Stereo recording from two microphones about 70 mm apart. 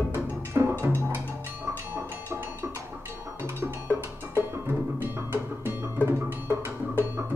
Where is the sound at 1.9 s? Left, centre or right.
Right.